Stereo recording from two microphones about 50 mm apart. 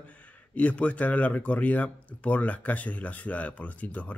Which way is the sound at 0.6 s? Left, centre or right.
Left.